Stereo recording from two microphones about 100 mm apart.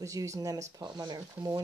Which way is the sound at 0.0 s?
30° right (ahead or behind).